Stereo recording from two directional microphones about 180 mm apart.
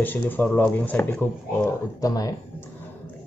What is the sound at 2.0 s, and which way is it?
Speech, 20° left (ahead or behind).